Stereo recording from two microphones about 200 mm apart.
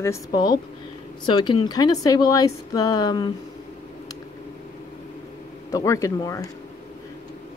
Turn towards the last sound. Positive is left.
turn(degrees=15)  # may be behind; listen again after turning